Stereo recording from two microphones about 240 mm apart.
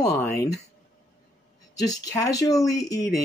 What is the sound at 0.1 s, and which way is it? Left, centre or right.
Speech, centre.